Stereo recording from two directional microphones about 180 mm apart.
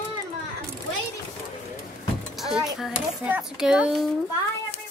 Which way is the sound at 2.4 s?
Centre (ahead or behind).